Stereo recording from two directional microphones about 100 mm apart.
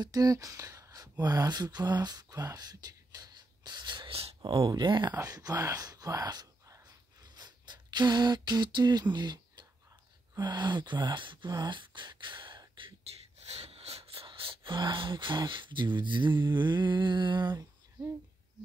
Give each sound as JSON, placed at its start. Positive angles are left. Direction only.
{"t": 0.0, "sound": "speech", "side_deg": -40}
{"t": 4.4, "sound": "speech", "side_deg": -40}
{"t": 4.8, "sound": "speech", "side_deg": -50}
{"t": 5.1, "sound": "speech", "side_deg": -35}
{"t": 7.2, "sound": "beatboxing", "side_deg": -45}
{"t": 10.3, "sound": "speech", "side_deg": -45}
{"t": 13.4, "sound": "speech", "side_deg": -90}